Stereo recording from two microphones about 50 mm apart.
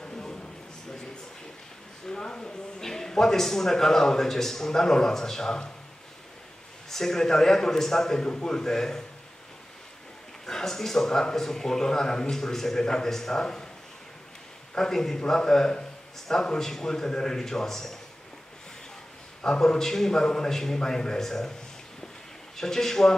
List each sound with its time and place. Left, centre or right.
0.0 s a sound: centre
2.0 s a sound: centre
2.8 s speech: centre
6.9 s speech: centre
10.4 s speech: centre
14.8 s speech: centre
19.4 s speech: centre
22.6 s speech: centre